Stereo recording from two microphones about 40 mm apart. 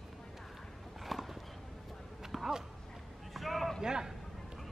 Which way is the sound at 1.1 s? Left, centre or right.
Centre.